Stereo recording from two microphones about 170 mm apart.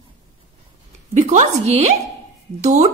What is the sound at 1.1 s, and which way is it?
A woman's voice, 45° right (ahead or behind).